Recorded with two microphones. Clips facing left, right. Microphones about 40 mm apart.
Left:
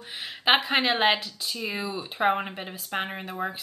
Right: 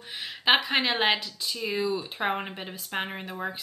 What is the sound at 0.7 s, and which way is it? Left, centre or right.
Speech, centre.